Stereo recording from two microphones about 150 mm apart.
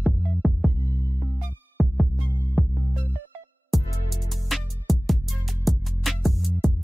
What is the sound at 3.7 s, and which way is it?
Music, centre (ahead or behind).